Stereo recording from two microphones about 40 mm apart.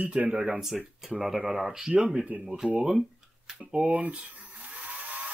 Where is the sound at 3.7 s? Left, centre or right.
Right.